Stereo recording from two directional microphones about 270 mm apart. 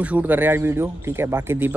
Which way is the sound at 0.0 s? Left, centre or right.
Centre.